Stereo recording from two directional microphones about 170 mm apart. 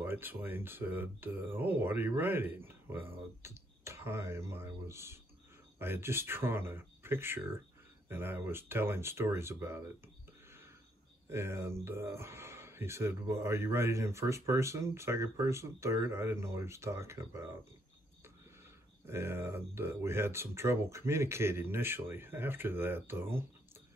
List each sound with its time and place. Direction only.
0.0 s speech: 10° right (ahead or behind)
11.2 s speech: 15° right (ahead or behind)
19.0 s speech: 15° right (ahead or behind)